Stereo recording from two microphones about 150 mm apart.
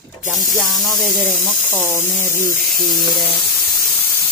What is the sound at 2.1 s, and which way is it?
Speech, 15° left (ahead or behind).